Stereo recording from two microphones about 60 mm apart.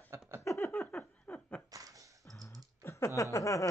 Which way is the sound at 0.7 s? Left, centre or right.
Left.